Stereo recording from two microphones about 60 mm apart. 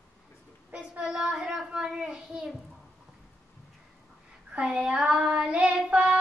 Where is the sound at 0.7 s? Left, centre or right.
Right.